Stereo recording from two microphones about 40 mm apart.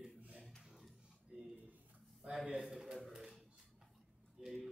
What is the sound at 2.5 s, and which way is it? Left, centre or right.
Speech, centre.